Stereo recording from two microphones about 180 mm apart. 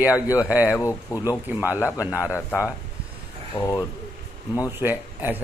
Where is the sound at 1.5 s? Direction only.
10° right (ahead or behind).